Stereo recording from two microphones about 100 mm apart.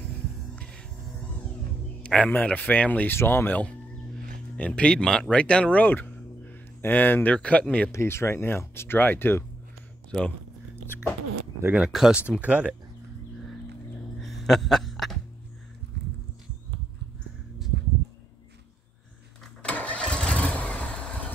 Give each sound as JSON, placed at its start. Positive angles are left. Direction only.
{"t": 0.6, "sound": "music", "side_deg": 10}
{"t": 2.0, "sound": "speech", "side_deg": 10}
{"t": 7.9, "sound": "speech", "side_deg": 25}
{"t": 11.6, "sound": "speech", "side_deg": -15}
{"t": 14.2, "sound": "music", "side_deg": 0}
{"t": 19.6, "sound": "vehicle", "side_deg": 15}